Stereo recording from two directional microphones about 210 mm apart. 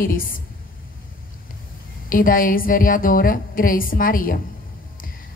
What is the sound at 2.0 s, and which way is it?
A woman's voice, 40° left (ahead or behind).